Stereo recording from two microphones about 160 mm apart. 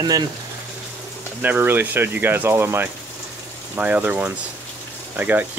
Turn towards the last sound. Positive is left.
turn(degrees=-10)  # may be behind; listen again after turning